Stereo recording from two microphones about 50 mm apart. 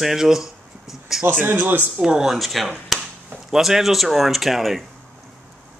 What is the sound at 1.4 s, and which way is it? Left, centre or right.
Speech, right.